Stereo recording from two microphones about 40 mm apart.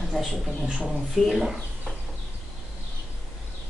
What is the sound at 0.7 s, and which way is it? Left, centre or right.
Speech, centre.